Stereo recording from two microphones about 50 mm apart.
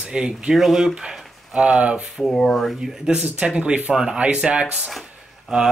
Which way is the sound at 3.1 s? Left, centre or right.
Right.